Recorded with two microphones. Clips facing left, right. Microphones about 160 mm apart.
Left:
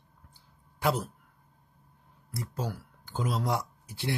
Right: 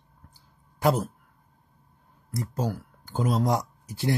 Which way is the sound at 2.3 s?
40° right (ahead or behind).